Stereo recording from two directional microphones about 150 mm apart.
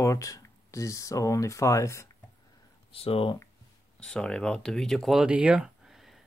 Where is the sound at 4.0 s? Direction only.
5° left (ahead or behind).